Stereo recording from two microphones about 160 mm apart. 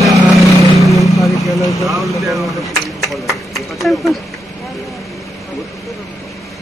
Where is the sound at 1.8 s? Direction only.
Centre (ahead or behind).